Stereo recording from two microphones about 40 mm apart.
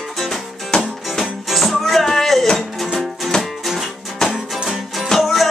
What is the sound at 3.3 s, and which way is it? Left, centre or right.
Music, centre.